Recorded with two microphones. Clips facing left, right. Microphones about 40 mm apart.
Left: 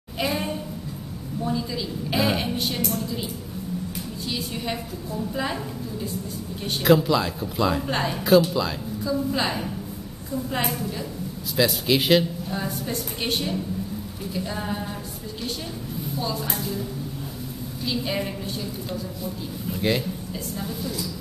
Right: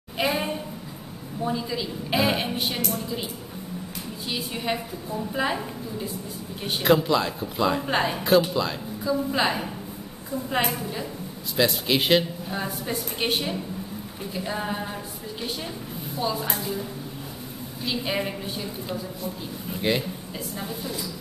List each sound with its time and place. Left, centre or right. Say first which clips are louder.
0.2 s a sound: right 1 dB; centre
1.4 s a woman's voice: even; centre
2.8 s a woman's voice: left 2 dB; centre
4.3 s a woman's voice: right 2 dB; centre
16.2 s a woman's voice: right 2 dB; centre
17.8 s a woman's voice: even; centre